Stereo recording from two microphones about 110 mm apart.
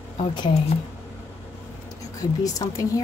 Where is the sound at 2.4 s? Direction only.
35° left (ahead or behind).